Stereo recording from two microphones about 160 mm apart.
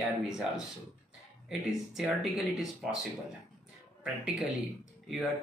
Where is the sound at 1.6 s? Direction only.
Centre (ahead or behind).